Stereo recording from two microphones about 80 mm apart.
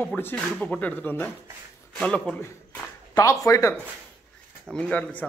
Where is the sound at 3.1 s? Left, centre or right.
Left.